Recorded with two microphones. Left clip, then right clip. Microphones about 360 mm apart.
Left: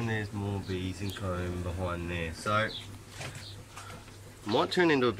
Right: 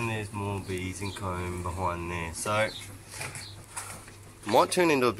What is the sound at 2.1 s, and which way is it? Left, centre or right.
Speech, centre.